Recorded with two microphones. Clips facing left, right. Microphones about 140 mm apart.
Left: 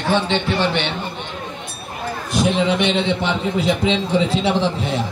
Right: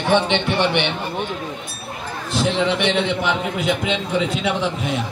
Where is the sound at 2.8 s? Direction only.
20° left (ahead or behind).